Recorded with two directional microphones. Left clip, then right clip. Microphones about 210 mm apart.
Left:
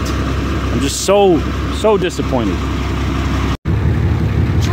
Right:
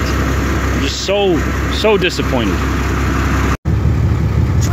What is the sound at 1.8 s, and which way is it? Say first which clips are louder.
Speech: right 1 dB; 10° left (ahead or behind).